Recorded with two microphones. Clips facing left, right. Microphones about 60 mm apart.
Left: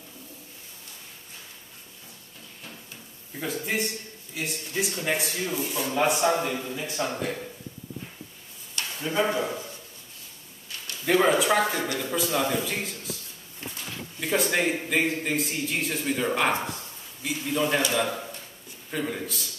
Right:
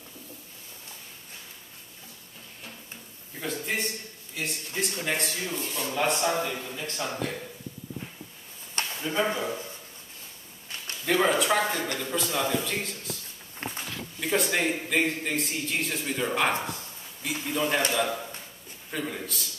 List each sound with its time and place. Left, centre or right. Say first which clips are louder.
3.3 s a man's voice: left 2 dB; centre
9.0 s speech: left 3 dB; centre
11.1 s a man's voice: left 2 dB; centre
11.6 s speech: left 2 dB; centre
14.2 s a man's voice: left 1 dB; centre
17.9 s a sound: left 1 dB; centre
18.9 s a man's voice: left 3 dB; centre